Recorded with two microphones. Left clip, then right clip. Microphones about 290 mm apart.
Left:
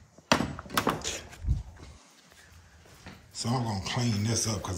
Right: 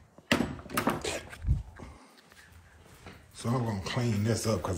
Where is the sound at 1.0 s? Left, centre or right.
Right.